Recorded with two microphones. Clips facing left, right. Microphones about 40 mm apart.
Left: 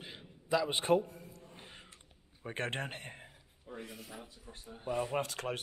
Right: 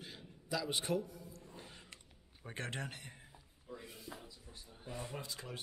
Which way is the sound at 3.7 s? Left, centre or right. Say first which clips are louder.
Left 3 dB; left.